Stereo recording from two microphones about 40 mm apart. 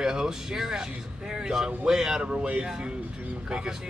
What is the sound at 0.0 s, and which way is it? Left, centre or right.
Speech, centre.